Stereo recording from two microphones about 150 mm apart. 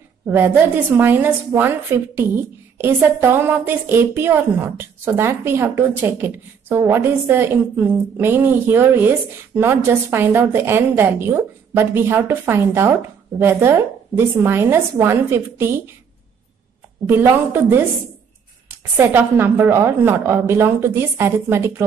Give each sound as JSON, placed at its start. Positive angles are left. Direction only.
{"t": 0.9, "sound": "a woman's voice", "side_deg": -15}
{"t": 17.0, "sound": "a woman's voice", "side_deg": -15}
{"t": 18.9, "sound": "a woman's voice", "side_deg": -15}